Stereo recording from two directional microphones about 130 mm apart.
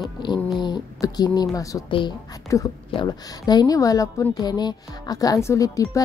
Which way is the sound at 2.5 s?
25° left (ahead or behind).